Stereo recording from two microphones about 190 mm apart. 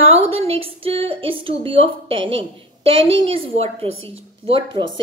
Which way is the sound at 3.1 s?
30° right (ahead or behind).